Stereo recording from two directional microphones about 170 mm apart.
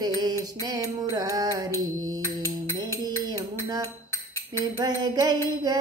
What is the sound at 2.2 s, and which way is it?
Mantra, 15° left (ahead or behind).